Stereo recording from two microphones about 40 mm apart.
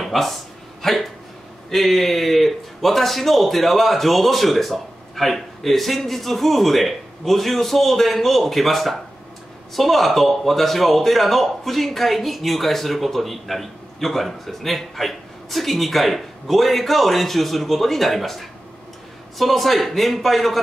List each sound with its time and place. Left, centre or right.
0.0 s a man's voice: centre